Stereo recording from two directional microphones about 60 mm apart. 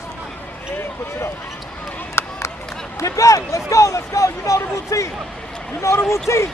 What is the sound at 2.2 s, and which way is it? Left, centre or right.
Run, left.